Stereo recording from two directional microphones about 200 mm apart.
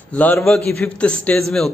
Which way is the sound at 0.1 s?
5° left (ahead or behind).